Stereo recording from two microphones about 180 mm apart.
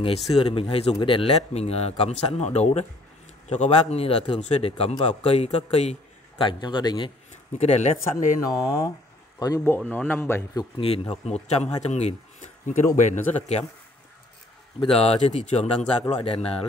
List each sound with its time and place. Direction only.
0.3 s a man's voice: 30° left (ahead or behind)
7.5 s a man's voice: 40° left (ahead or behind)
8.5 s speech: 20° left (ahead or behind)
9.8 s speech: 5° left (ahead or behind)
10.8 s a man's voice: 35° left (ahead or behind)
14.8 s a man's voice: 35° left (ahead or behind)